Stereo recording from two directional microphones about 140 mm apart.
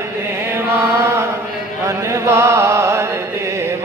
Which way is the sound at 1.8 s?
20° right (ahead or behind).